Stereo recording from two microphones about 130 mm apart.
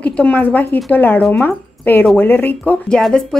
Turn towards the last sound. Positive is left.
turn(degrees=5)  # may be behind; listen again after turning